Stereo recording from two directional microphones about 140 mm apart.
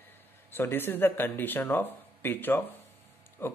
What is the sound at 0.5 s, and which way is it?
Speech, 15° left (ahead or behind).